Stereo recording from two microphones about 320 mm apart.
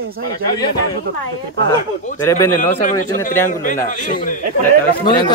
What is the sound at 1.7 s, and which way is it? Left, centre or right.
Speech, centre.